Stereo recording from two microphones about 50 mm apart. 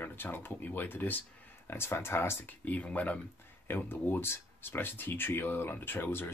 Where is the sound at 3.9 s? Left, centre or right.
Left.